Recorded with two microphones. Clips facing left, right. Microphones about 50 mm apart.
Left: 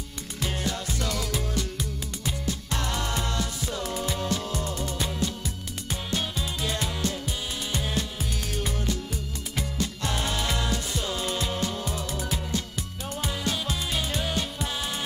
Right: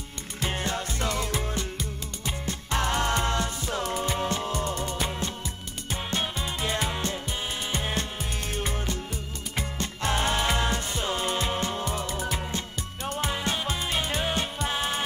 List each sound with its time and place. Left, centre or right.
0.4 s music: right
4.5 s music: right
5.0 s music: right
13.0 s music: right
13.3 s music: right